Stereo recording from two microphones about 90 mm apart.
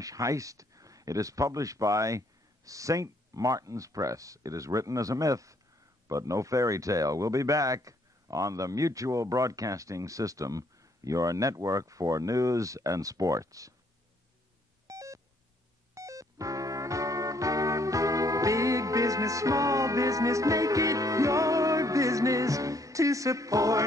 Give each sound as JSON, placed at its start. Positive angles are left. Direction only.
{"t": 0.0, "sound": "speech", "side_deg": -40}
{"t": 14.9, "sound": "telephone dialing", "side_deg": -40}
{"t": 15.9, "sound": "music", "side_deg": -35}